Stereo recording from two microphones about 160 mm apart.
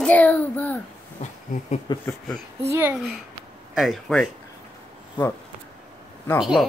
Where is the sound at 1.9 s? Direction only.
30° left (ahead or behind).